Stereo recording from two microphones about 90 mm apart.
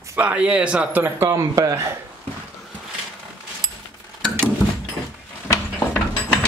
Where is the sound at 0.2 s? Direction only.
15° right (ahead or behind); by 2.0 s 35° right (ahead or behind).